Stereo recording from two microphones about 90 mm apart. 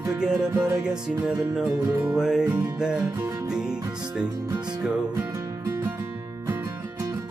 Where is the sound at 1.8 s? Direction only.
25° right (ahead or behind).